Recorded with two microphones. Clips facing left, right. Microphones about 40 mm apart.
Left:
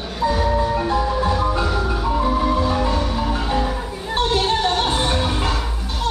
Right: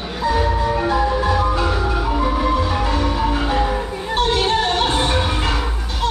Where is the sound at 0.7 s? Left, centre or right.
Centre.